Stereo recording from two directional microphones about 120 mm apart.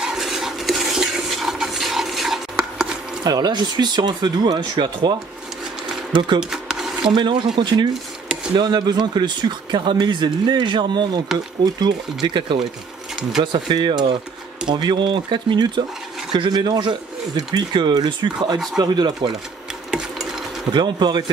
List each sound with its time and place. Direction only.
0.0 s stir: 5° right (ahead or behind)
3.3 s speech: 35° right (ahead or behind)
6.1 s speech: 40° right (ahead or behind)
6.5 s a sound: 5° right (ahead or behind)
7.1 s speech: 40° right (ahead or behind)
19.9 s sewing machine: 5° right (ahead or behind)
20.7 s speech: 40° right (ahead or behind)